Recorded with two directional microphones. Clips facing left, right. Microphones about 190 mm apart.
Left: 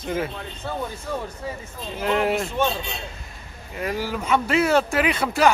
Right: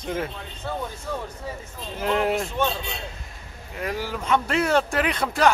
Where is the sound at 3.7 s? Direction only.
5° left (ahead or behind).